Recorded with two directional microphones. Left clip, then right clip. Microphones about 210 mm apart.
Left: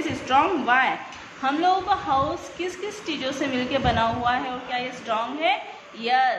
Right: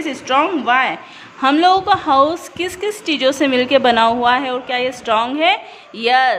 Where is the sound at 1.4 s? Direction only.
50° right (ahead or behind).